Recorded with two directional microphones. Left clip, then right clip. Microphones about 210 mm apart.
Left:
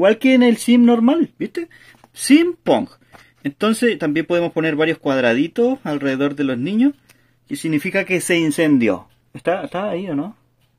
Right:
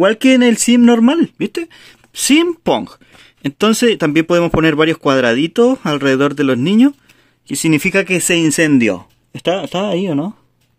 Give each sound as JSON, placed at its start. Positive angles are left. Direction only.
{"t": 0.0, "sound": "speech", "side_deg": -45}